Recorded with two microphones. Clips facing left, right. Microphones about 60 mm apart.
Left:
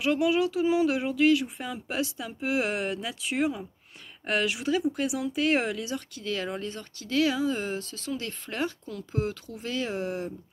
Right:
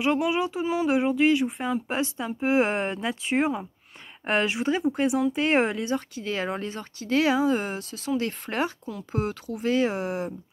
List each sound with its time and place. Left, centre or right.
0.0 s speech: right